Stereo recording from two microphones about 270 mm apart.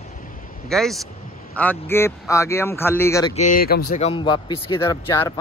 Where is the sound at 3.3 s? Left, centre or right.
Left.